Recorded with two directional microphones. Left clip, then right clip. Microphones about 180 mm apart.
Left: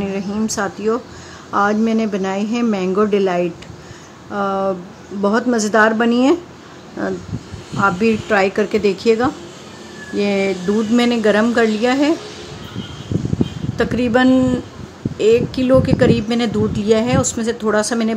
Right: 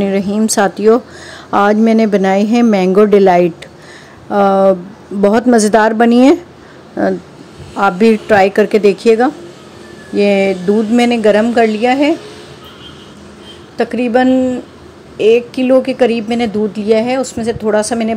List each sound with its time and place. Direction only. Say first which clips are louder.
0.0 s a woman's voice: right 8 dB; 30° right (ahead or behind)
7.7 s a woman's voice: right 5 dB; 25° right (ahead or behind); by 12.1 s 10° right (ahead or behind)
13.7 s speech: right 4 dB; 5° right (ahead or behind)